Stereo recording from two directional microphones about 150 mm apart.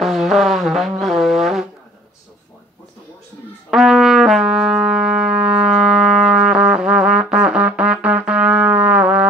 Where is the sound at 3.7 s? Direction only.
Centre (ahead or behind).